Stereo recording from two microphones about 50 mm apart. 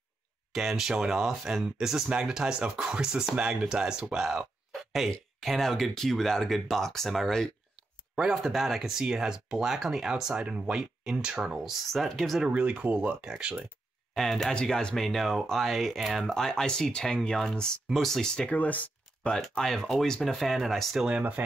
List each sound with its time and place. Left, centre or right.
0.5 s speech: centre
7.7 s speech: centre
11.9 s speech: centre
12.4 s speech: right
13.2 s speech: centre
14.1 s speech: centre
14.5 s speech: centre
15.0 s speech: centre
16.3 s speech: centre
18.5 s speech: left
19.3 s speech: centre